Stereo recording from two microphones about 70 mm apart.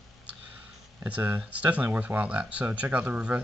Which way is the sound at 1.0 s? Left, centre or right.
Right.